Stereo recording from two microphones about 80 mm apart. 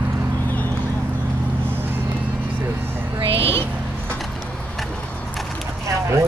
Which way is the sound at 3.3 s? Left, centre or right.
Left.